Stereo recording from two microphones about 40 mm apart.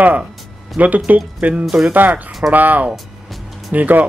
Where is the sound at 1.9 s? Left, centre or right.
Right.